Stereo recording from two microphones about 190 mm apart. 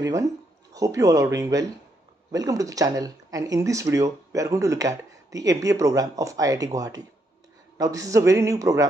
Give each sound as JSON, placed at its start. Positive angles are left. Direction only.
{"t": 0.0, "sound": "speech", "side_deg": -15}